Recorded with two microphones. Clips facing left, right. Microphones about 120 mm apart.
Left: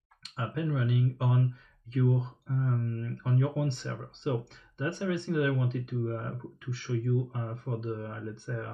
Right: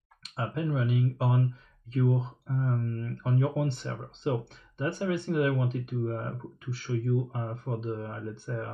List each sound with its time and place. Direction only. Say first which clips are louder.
0.4 s speech: right 2 dB; 50° right (ahead or behind)
3.1 s speech: right 2 dB; 50° right (ahead or behind)
6.0 s speech: right 2 dB; 40° right (ahead or behind)
8.1 s speech: right 2 dB; 35° right (ahead or behind)